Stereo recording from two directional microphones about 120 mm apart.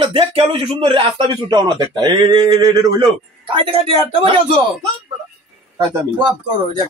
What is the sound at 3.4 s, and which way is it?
Speech, 50° right (ahead or behind).